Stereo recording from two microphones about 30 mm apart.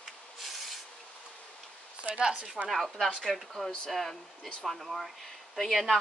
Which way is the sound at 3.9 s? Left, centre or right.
Centre.